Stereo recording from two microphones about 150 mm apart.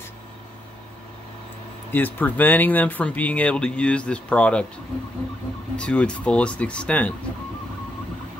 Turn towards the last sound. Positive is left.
turn(degrees=10)  # may be behind; listen again after turning